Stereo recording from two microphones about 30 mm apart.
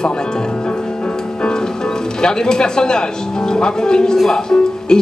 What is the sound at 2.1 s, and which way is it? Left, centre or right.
Speech, left.